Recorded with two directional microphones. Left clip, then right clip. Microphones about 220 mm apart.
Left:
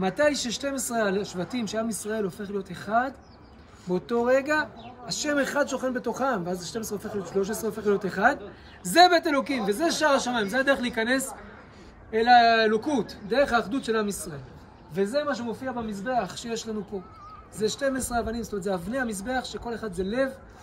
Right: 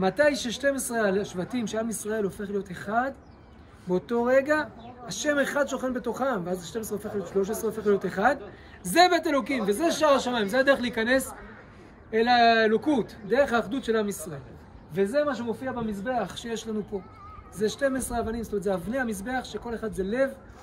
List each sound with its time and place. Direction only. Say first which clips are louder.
0.0 s speech: right 1 dB; 15° left (ahead or behind)